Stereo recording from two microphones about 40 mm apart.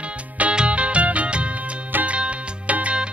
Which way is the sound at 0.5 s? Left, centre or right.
Right.